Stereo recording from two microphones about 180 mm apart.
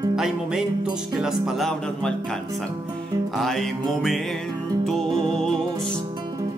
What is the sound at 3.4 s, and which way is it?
Mantra, centre (ahead or behind).